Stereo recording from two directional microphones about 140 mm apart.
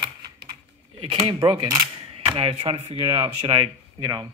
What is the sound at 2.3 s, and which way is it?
Speech, 45° right (ahead or behind).